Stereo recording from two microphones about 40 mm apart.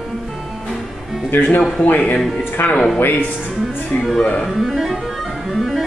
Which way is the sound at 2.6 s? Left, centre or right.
Left.